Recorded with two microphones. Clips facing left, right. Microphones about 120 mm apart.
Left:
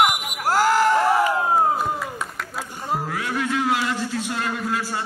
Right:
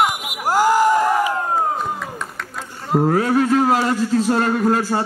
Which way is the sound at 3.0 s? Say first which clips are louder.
Right 13 dB; 40° right (ahead or behind).